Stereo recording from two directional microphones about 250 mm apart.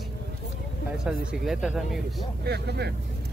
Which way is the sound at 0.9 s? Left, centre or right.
Centre.